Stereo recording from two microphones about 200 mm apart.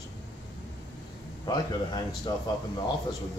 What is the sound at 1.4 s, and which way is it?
Speech, 20° left (ahead or behind).